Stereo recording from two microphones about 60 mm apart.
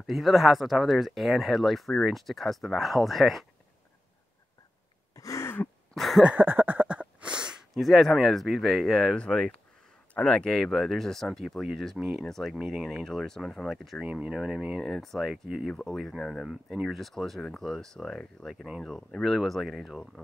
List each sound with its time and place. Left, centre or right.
0.0 s speech: centre
5.1 s throat clearing: left
5.9 s speech: centre
6.3 s a sound: right; by 7.5 s centre
7.7 s speech: centre
9.1 s speech: centre
12.3 s speech: centre
14.8 s speech: centre
16.7 s speech: centre